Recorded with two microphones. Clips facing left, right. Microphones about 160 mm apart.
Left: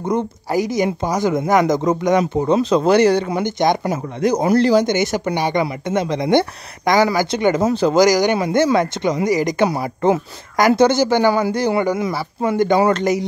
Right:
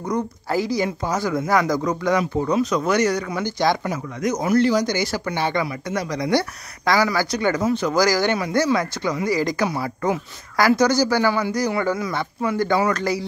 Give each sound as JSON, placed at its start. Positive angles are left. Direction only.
{"t": 0.0, "sound": "speech", "side_deg": 25}
{"t": 3.8, "sound": "speech", "side_deg": 30}
{"t": 8.0, "sound": "speech", "side_deg": 15}
{"t": 11.8, "sound": "speech", "side_deg": 15}